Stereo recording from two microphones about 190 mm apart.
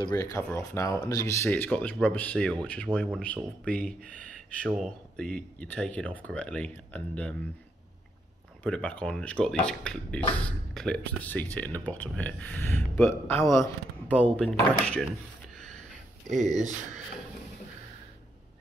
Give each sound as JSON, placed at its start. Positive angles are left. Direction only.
{"t": 0.0, "sound": "speech", "side_deg": 15}
{"t": 8.6, "sound": "speech", "side_deg": 5}
{"t": 14.2, "sound": "speech", "side_deg": 5}